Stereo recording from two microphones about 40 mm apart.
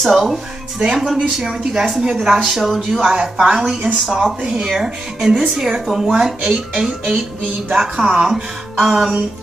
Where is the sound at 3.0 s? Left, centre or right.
Right.